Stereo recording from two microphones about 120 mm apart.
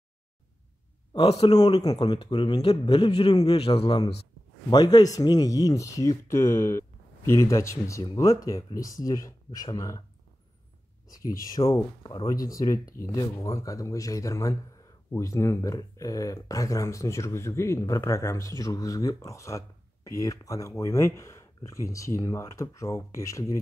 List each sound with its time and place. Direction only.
1.5 s speech: 35° left (ahead or behind)
4.6 s speech: 35° left (ahead or behind)
11.1 s speech: 30° left (ahead or behind)
12.0 s speech: 40° left (ahead or behind)
12.3 s speech: 30° left (ahead or behind)